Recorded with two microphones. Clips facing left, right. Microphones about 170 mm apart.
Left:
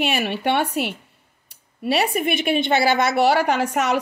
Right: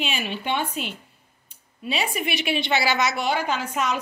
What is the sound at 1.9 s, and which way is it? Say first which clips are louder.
A woman's voice: left 6 dB; 60° left (ahead or behind).